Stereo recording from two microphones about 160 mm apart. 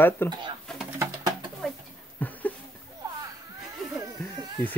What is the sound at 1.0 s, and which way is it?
Bird, 25° right (ahead or behind).